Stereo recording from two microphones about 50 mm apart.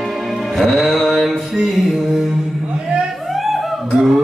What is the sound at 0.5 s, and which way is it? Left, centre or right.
Music, centre.